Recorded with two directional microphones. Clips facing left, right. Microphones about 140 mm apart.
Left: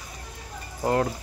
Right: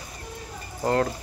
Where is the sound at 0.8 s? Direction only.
15° left (ahead or behind).